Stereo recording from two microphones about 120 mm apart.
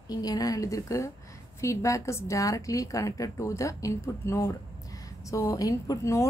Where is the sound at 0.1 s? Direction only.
30° left (ahead or behind).